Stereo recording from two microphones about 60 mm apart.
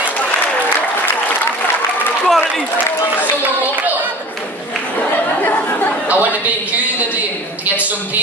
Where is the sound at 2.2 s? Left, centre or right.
Centre.